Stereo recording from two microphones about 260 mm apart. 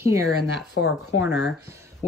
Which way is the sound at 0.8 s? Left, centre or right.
Left.